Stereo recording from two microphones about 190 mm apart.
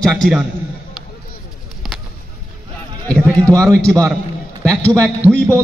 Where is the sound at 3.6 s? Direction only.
15° right (ahead or behind).